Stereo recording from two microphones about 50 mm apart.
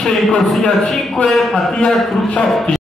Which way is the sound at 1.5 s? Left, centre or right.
Centre.